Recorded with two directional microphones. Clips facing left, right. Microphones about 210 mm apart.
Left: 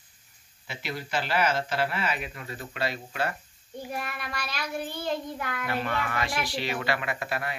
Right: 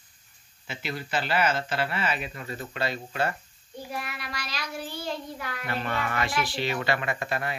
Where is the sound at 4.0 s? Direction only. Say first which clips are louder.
Left 2 dB; 50° left (ahead or behind).